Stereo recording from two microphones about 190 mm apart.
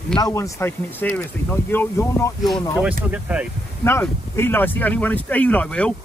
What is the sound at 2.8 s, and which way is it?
Speech, 10° right (ahead or behind).